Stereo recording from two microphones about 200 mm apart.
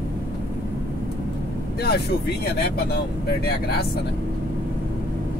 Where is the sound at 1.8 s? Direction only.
55° left (ahead or behind).